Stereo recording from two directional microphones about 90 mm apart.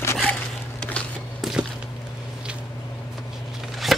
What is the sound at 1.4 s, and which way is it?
Walk, 5° right (ahead or behind).